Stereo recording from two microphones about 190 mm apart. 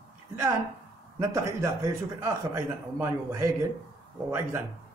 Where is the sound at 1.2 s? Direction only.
15° right (ahead or behind).